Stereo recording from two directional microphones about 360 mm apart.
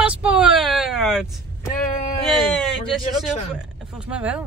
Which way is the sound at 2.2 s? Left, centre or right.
Centre.